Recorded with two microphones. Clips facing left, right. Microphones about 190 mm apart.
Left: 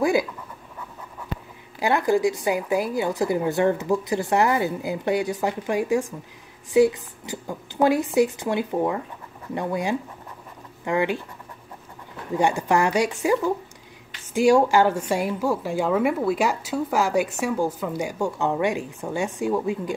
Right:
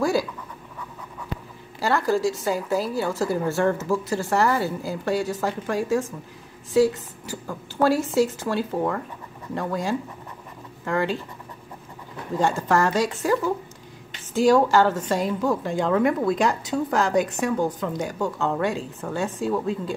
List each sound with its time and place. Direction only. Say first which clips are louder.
1.8 s a woman's voice: left 2 dB; 20° left (ahead or behind)
12.4 s a woman's voice: left 1 dB; 15° left (ahead or behind)